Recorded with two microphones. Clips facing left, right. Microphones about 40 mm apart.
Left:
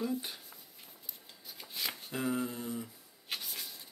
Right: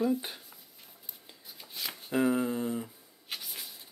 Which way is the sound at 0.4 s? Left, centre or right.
Centre.